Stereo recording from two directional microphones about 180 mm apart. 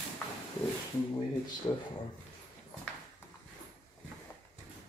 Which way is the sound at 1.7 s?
25° left (ahead or behind).